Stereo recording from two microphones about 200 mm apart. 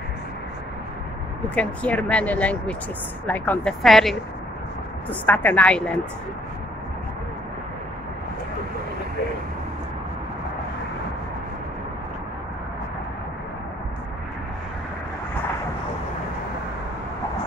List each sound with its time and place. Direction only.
1.5 s speech: 5° left (ahead or behind)
5.2 s speech: 10° left (ahead or behind)